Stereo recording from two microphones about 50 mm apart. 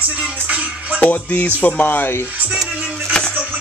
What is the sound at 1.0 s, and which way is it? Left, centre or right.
Speech, left.